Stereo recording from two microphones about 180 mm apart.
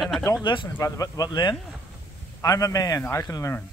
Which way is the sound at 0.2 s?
20° left (ahead or behind).